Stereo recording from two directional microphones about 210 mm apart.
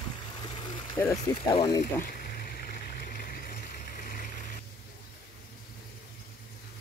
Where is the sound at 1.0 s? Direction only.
10° left (ahead or behind).